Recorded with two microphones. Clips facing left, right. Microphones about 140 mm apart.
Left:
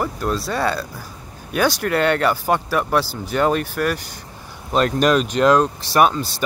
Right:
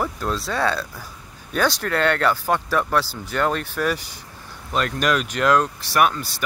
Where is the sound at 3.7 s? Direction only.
Centre (ahead or behind).